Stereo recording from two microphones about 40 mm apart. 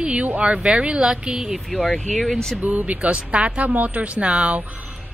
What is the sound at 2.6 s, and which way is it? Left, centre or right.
Speech, right.